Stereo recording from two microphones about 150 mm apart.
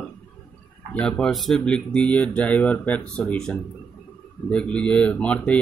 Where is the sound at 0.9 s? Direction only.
5° left (ahead or behind).